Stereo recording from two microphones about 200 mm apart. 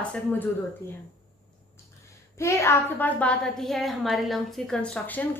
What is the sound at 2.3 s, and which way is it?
A woman's voice, 15° left (ahead or behind).